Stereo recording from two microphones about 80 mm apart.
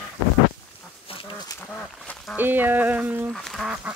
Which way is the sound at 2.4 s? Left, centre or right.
Right.